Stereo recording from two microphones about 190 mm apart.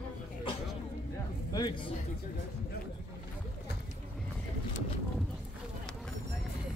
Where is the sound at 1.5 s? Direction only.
20° left (ahead or behind).